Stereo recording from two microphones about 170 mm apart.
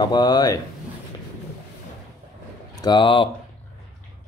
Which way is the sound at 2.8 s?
25° left (ahead or behind).